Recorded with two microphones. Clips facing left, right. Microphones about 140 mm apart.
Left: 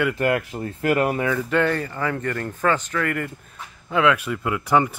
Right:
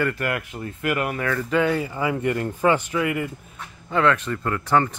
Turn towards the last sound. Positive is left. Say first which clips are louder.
# left 1 dB
turn(degrees=10)  # may be behind; listen again after turning